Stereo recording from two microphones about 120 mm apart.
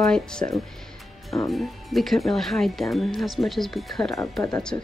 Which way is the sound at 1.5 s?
Centre (ahead or behind).